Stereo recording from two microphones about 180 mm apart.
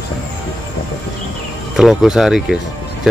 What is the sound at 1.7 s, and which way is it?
Speech, 5° right (ahead or behind).